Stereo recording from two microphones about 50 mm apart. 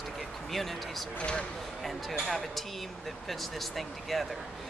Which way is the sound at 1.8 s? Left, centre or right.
Centre.